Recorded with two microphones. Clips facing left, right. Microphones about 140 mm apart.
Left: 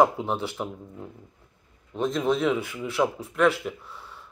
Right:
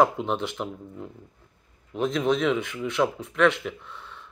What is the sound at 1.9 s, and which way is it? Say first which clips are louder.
Speech: right 1 dB; centre (ahead or behind).